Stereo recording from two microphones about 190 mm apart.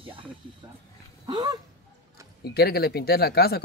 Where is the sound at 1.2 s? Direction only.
25° right (ahead or behind).